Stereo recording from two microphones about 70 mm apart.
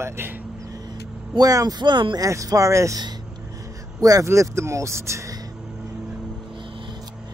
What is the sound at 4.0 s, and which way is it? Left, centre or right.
Speech, right.